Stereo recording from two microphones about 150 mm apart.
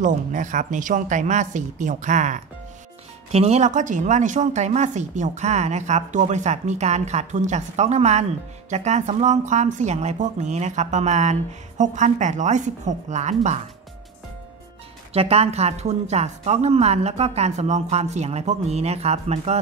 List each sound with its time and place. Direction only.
0.0 s a woman's voice: 55° right (ahead or behind)
15.1 s speech: 40° right (ahead or behind)